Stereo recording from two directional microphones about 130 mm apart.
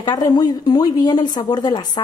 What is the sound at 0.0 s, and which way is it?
Speech, 30° left (ahead or behind).